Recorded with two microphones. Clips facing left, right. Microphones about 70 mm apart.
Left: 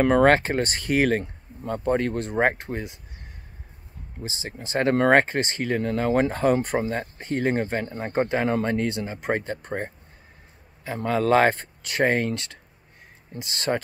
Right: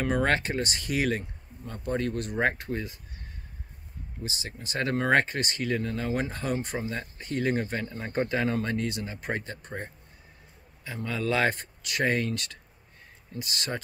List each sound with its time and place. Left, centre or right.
0.0 s speech: left
0.3 s speech: left
2.2 s speech: left
4.2 s speech: left
5.8 s speech: left
11.0 s speech: left
13.4 s speech: left